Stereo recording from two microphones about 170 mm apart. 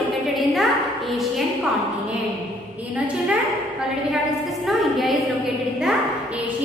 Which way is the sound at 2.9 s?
10° right (ahead or behind).